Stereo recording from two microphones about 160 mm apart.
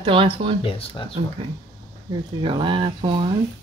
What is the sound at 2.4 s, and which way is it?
Speech, 30° right (ahead or behind).